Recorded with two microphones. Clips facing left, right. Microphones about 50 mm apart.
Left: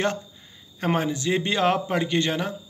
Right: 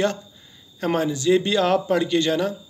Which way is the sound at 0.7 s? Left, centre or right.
Left.